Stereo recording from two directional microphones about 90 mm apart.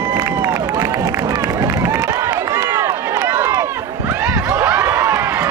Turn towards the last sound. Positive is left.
turn(degrees=-30)  # may be behind; listen again after turning